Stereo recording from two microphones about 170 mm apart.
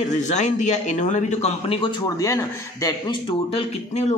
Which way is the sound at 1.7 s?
25° left (ahead or behind).